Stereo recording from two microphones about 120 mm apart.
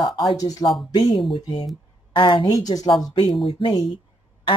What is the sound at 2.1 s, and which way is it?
Speech, 40° left (ahead or behind).